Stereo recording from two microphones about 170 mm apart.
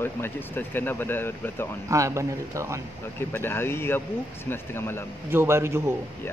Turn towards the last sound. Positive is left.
turn(degrees=-15)  # may be behind; listen again after turning